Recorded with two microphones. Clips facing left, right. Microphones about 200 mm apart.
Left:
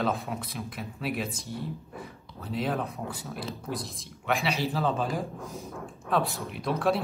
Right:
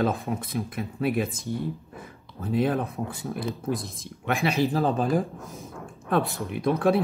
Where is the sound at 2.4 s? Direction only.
50° right (ahead or behind).